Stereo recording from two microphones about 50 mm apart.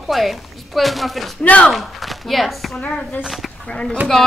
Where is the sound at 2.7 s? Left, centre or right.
Left.